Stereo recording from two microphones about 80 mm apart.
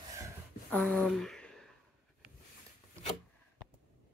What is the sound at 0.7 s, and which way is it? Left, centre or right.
Speech, centre.